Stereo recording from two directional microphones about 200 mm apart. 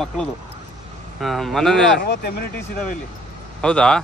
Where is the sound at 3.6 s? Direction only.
5° left (ahead or behind).